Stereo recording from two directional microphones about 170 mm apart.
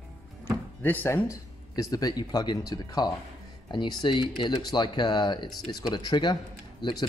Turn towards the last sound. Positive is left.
turn(degrees=25)  # may be behind; listen again after turning